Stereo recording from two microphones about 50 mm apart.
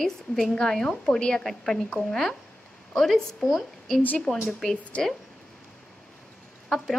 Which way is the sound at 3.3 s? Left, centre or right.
Centre.